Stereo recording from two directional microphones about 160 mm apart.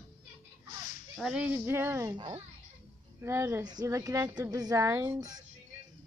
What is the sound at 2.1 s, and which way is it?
Speech, 30° right (ahead or behind).